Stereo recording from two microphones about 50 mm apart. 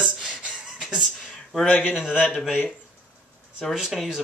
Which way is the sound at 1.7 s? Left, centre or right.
Left.